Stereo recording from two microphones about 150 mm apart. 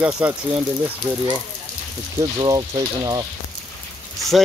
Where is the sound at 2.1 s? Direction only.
25° right (ahead or behind).